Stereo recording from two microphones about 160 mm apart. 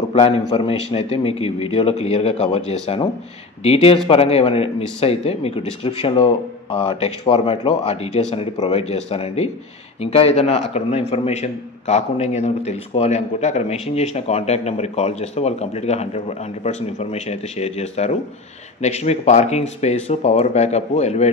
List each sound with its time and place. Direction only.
0.1 s a man's voice: 40° left (ahead or behind)